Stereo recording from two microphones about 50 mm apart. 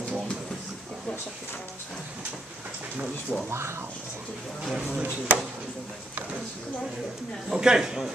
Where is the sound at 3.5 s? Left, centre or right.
Right.